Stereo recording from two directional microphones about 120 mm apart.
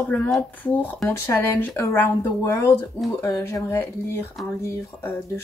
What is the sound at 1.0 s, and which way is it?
Speech, 25° left (ahead or behind).